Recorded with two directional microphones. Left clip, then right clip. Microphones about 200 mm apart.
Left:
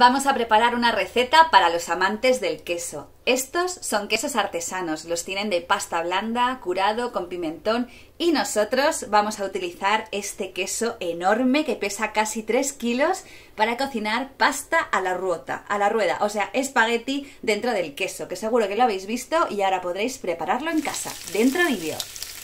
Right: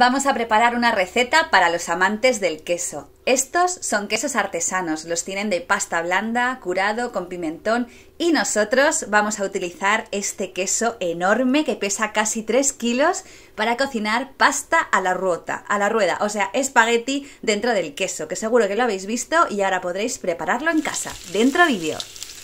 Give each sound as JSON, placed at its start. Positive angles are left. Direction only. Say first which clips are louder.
{"t": 0.0, "sound": "a woman's voice", "louder": "even", "side_deg": -15}